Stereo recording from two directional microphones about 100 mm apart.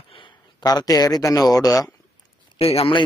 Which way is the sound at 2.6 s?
85° left.